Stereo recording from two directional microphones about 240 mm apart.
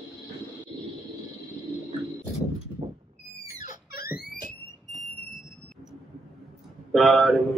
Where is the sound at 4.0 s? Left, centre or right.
Left.